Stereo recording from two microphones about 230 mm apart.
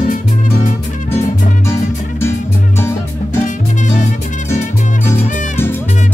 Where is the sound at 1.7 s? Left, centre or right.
Centre.